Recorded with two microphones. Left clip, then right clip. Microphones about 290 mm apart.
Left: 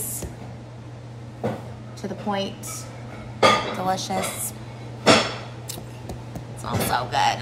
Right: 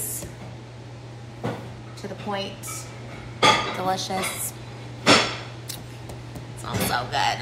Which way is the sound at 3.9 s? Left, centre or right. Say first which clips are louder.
Left 1 dB; centre.